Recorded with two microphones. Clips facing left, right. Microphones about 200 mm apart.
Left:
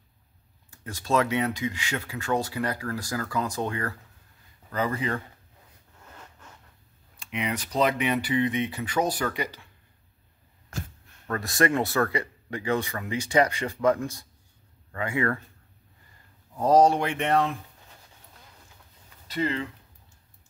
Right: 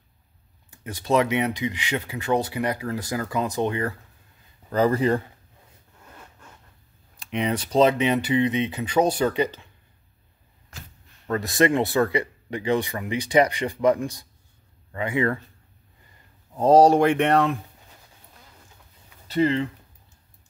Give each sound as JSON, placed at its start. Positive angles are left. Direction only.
{"t": 0.8, "sound": "speech", "side_deg": -20}
{"t": 4.6, "sound": "speech", "side_deg": -35}
{"t": 7.2, "sound": "speech", "side_deg": -35}
{"t": 11.2, "sound": "speech", "side_deg": -20}
{"t": 16.5, "sound": "speech", "side_deg": -30}
{"t": 16.9, "sound": "speech", "side_deg": -55}
{"t": 19.2, "sound": "speech", "side_deg": -30}